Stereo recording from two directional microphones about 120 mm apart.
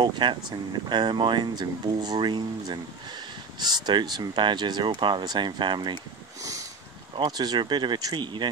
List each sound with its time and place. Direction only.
0.0 s speech: 40° right (ahead or behind)
7.2 s speech: 35° right (ahead or behind)